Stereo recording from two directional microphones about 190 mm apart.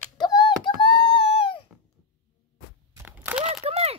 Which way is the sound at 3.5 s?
35° right (ahead or behind).